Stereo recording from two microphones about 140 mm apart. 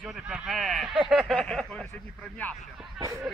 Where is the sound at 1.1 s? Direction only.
Centre (ahead or behind).